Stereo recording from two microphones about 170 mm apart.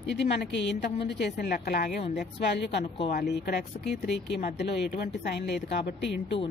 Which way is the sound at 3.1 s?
70° left (ahead or behind).